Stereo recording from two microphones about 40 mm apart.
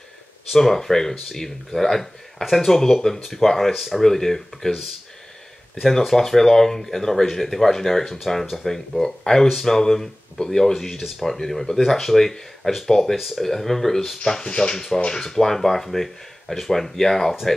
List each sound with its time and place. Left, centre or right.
0.5 s speech: centre
4.0 s speech: centre
5.9 s speech: centre
10.8 s speech: centre